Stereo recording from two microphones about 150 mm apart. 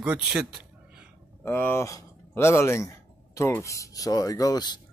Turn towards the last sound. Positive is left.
turn(degrees=30)  # may be behind; listen again after turning